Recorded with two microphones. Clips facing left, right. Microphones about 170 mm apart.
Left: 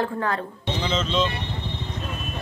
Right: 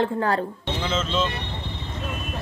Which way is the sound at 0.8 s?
5° right (ahead or behind).